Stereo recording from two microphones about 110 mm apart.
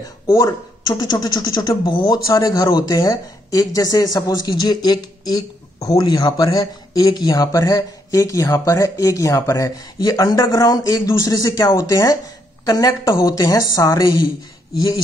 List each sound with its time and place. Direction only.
0.0 s speech: 30° left (ahead or behind)
2.0 s speech: 30° left (ahead or behind)